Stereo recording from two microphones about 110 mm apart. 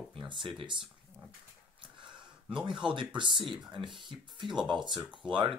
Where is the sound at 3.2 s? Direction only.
50° right (ahead or behind).